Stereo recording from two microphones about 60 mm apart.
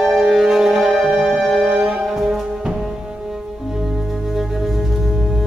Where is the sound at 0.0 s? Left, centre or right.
Centre.